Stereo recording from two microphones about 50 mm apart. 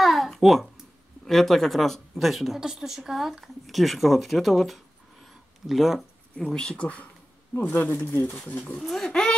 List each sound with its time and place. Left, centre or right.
0.0 s babbling: centre
1.2 s speech: centre
6.3 s speech: centre
7.7 s speech: left
8.5 s speech: left
8.8 s speech: centre